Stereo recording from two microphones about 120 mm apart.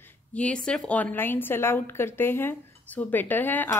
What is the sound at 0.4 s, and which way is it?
Speech, 10° left (ahead or behind).